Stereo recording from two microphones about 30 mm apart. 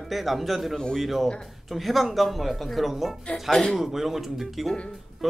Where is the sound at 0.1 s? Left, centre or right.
Centre.